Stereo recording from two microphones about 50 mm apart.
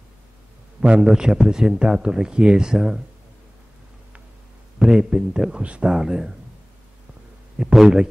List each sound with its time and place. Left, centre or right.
0.7 s a man's voice: centre
4.7 s a man's voice: centre
7.5 s a man's voice: centre